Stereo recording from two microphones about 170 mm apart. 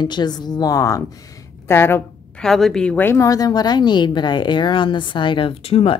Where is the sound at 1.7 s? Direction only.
15° left (ahead or behind).